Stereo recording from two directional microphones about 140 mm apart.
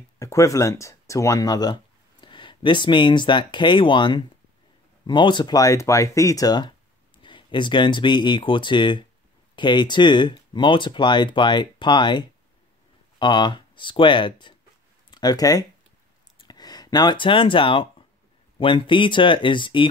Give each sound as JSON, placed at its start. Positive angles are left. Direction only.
{"t": 0.2, "sound": "speech", "side_deg": 20}